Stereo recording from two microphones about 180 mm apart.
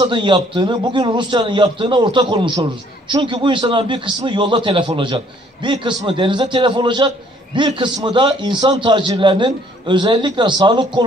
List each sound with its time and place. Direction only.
0.0 s a man's voice: 25° right (ahead or behind)